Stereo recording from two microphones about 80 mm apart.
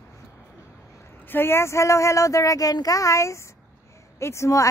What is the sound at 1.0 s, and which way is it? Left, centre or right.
Speech, left.